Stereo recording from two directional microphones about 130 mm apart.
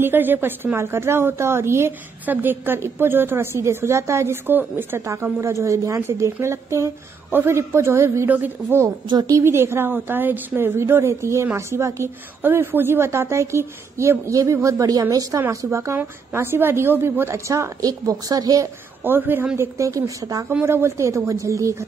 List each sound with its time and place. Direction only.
0.0 s a woman's voice: 15° right (ahead or behind)
19.0 s a woman's voice: 15° right (ahead or behind)